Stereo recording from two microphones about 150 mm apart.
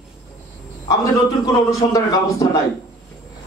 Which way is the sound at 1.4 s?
25° left (ahead or behind).